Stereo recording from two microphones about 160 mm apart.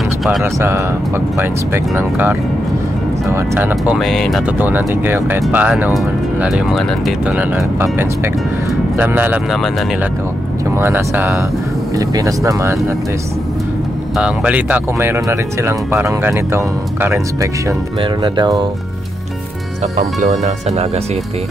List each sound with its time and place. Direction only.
0.4 s speech: 15° right (ahead or behind); by 4.4 s centre (ahead or behind)
4.5 s speech: 10° right (ahead or behind)
7.2 s speech: 10° right (ahead or behind)
9.5 s speech: centre (ahead or behind)
10.8 s speech: 15° right (ahead or behind)
14.1 s speech: 5° right (ahead or behind)
18.0 s speech: 30° right (ahead or behind)
19.8 s speech: 45° right (ahead or behind)